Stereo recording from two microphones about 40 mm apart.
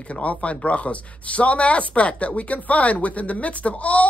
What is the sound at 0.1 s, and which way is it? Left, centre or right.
Speech, left.